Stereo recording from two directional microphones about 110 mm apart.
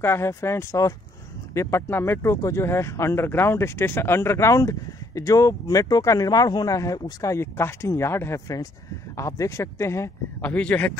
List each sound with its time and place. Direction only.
0.0 s speech: 25° left (ahead or behind)
10.4 s speech: 15° left (ahead or behind)